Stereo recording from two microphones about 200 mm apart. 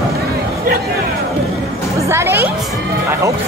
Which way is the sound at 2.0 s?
10° right (ahead or behind).